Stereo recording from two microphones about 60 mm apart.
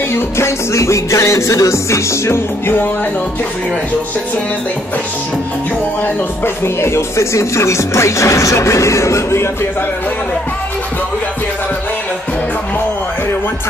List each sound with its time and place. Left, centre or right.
0.1 s speech: left
6.4 s speech: left